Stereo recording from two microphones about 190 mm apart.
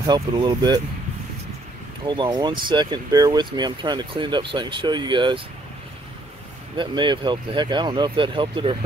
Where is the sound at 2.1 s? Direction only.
20° right (ahead or behind).